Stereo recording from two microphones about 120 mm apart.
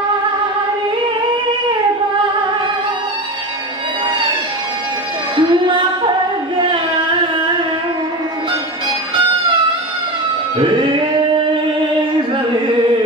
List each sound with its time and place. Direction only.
5.3 s music: 45° right (ahead or behind)
6.7 s carnatic music: 45° right (ahead or behind)